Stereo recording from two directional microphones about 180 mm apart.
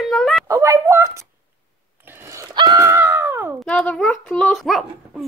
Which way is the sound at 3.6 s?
5° left (ahead or behind).